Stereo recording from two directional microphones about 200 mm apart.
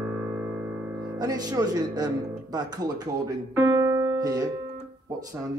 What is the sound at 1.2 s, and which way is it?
Speech, 20° right (ahead or behind).